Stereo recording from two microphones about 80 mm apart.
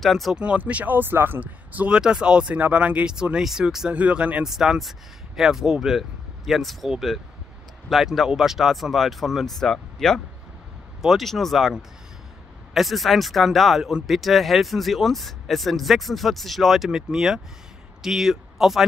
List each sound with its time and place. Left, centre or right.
0.0 s speech: centre
0.4 s speech: centre